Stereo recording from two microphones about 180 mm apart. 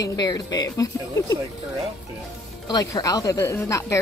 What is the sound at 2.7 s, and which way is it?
Speech, 20° left (ahead or behind).